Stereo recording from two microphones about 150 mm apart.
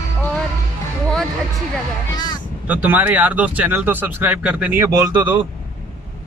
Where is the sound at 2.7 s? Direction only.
10° right (ahead or behind).